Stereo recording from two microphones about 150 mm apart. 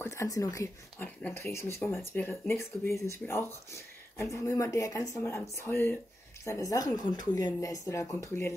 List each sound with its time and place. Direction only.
0.0 s speech: 20° left (ahead or behind)